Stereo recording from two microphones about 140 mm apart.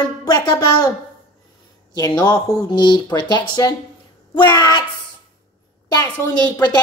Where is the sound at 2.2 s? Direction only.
30° left (ahead or behind).